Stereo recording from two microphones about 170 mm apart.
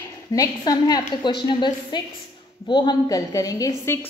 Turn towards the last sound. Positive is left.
turn(degrees=15)  # may be behind; listen again after turning